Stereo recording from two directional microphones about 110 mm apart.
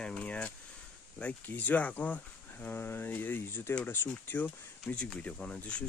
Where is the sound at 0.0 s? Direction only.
10° left (ahead or behind).